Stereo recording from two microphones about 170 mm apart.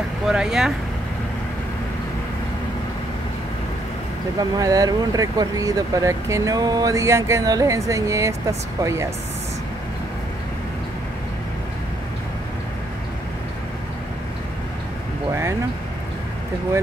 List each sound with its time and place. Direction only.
0.3 s speech: 5° right (ahead or behind)
4.4 s speech: 20° right (ahead or behind)